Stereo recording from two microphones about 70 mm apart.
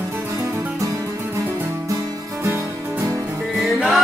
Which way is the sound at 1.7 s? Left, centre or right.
Right.